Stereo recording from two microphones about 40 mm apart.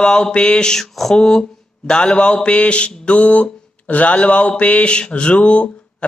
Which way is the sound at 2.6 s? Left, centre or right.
Left.